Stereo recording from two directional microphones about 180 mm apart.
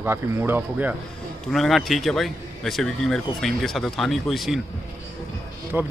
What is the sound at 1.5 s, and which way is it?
A man's voice, centre (ahead or behind).